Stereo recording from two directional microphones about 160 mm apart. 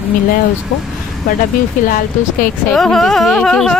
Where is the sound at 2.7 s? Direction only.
Centre (ahead or behind).